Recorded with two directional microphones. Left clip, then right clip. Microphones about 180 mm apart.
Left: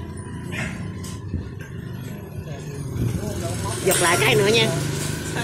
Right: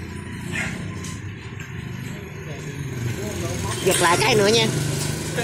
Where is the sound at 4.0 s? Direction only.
20° right (ahead or behind).